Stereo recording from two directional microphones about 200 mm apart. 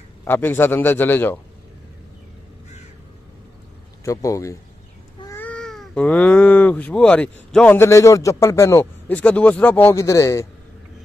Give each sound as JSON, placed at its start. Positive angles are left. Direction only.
{"t": 0.2, "sound": "speech", "side_deg": 10}
{"t": 4.0, "sound": "speech", "side_deg": 15}